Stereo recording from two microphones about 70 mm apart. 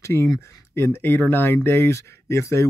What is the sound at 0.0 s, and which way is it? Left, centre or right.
Speech, left.